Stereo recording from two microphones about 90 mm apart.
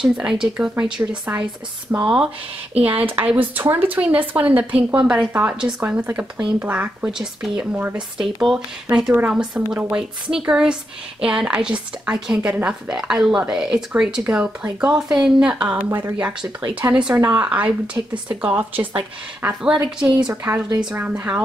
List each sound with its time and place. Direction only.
0.0 s a woman's voice: 5° right (ahead or behind)
7.7 s a woman's voice: 15° right (ahead or behind)
8.2 s a woman's voice: 5° right (ahead or behind)
15.9 s a woman's voice: 30° right (ahead or behind)
16.2 s a woman's voice: 10° right (ahead or behind)
18.0 s speech: 40° right (ahead or behind)
18.4 s a woman's voice: 20° right (ahead or behind)